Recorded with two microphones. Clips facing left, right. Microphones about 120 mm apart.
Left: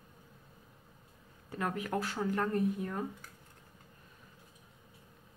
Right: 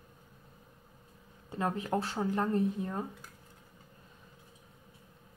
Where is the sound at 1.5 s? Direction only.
25° right (ahead or behind).